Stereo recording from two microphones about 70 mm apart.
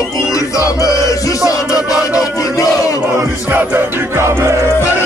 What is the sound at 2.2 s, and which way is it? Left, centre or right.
Battle cry, left.